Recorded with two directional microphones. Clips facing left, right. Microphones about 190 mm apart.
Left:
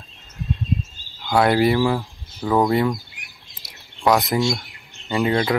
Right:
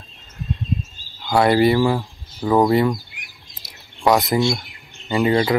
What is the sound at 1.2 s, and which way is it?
Speech, centre (ahead or behind).